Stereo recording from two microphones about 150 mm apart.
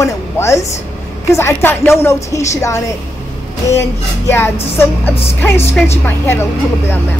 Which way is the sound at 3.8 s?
15° left (ahead or behind).